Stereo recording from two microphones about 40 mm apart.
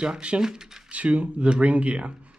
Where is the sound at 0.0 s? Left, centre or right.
Right.